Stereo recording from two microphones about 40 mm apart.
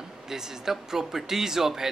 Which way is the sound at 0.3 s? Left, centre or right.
Centre.